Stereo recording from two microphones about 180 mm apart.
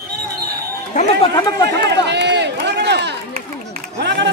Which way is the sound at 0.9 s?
40° left (ahead or behind).